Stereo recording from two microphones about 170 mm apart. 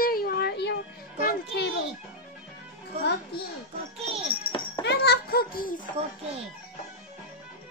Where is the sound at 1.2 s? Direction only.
75° left (ahead or behind).